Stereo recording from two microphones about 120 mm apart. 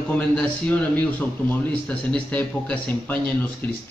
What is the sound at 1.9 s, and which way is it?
A man's voice, 10° left (ahead or behind).